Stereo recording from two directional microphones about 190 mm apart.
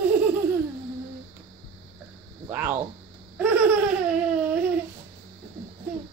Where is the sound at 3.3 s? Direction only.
10° right (ahead or behind).